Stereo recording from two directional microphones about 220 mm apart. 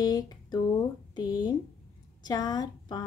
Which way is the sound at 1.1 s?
20° left (ahead or behind).